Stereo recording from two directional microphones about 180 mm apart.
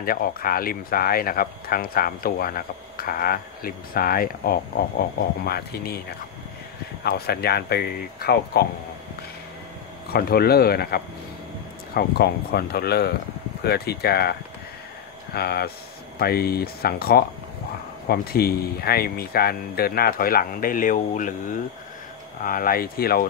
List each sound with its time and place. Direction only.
0.0 s speech: 55° left (ahead or behind)
10.1 s speech: 60° left (ahead or behind)
15.3 s speech: 60° left (ahead or behind)